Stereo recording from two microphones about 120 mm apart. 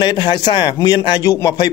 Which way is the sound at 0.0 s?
35° left (ahead or behind).